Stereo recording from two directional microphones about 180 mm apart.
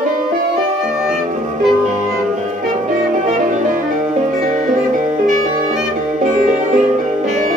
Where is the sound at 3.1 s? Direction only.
45° right (ahead or behind).